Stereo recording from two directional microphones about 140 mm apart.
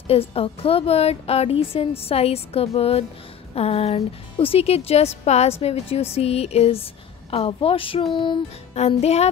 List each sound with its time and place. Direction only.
0.1 s a woman's voice: 45° left (ahead or behind)
8.7 s a woman's voice: 50° left (ahead or behind)